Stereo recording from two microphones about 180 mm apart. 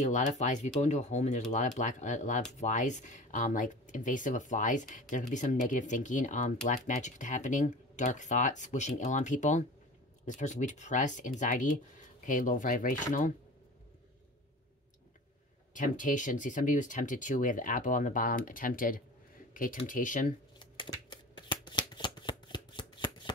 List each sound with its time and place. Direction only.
0.0 s speech: 40° left (ahead or behind)
15.7 s speech: 45° left (ahead or behind)
20.5 s shuffling cards: 25° left (ahead or behind)